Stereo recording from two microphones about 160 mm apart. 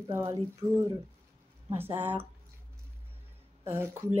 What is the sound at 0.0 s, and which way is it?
Speech, 15° right (ahead or behind).